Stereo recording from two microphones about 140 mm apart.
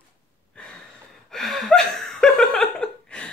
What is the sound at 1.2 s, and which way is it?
Chuckle, centre (ahead or behind).